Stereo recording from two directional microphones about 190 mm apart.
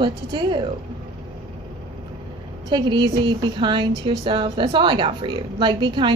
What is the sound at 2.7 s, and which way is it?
A woman's voice, 25° right (ahead or behind).